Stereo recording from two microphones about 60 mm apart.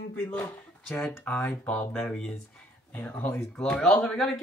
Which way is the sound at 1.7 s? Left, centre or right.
Centre.